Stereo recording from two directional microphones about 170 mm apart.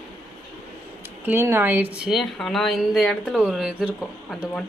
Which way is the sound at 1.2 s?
15° right (ahead or behind).